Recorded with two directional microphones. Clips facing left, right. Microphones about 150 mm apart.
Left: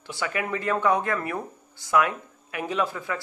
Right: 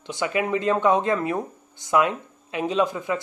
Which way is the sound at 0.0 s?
20° right (ahead or behind).